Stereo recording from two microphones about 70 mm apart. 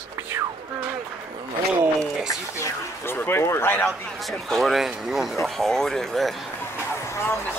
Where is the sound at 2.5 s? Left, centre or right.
Left.